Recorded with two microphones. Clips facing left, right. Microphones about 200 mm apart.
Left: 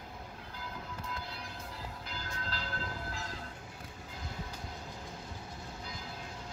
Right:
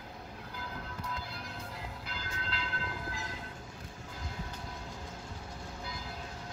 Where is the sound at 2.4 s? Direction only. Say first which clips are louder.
Right 2 dB; 35° left (ahead or behind).